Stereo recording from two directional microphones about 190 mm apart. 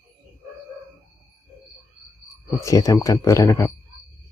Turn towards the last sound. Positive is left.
turn(degrees=15)  # may be behind; listen again after turning